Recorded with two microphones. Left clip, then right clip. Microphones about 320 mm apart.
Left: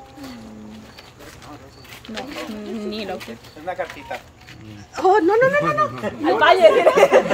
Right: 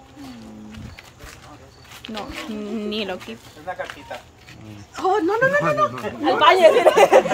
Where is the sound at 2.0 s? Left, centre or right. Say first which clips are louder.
Even; centre.